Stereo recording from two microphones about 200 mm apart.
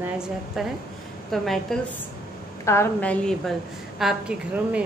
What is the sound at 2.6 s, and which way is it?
A woman's voice, 15° left (ahead or behind).